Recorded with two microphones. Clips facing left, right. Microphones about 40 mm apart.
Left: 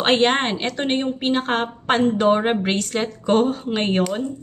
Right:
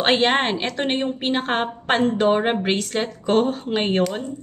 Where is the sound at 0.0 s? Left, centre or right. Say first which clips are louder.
Left 1 dB; centre.